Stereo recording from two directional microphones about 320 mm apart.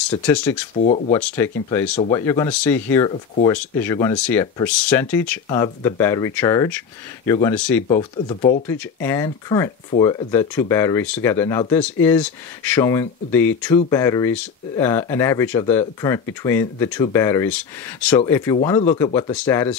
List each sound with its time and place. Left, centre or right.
0.2 s speech: centre
0.7 s speech: left
1.1 s speech: centre
8.6 s speech: centre